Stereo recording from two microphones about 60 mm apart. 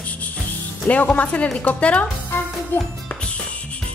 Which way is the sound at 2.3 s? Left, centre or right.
Left.